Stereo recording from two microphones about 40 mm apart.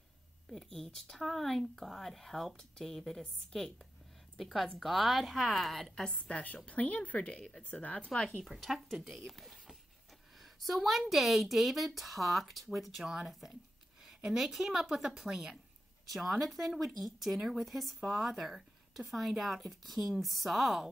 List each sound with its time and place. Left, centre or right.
0.7 s speech: centre
6.1 s speech: left
7.3 s speech: centre
7.7 s speech: left
8.0 s speech: left
8.5 s speech: centre
13.0 s a woman's voice: centre
16.1 s speech: centre